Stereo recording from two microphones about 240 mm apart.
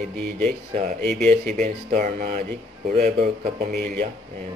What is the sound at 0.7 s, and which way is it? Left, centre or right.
Speech, right.